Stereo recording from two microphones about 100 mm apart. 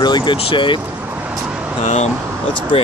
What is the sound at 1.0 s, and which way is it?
Vehicle, 20° right (ahead or behind).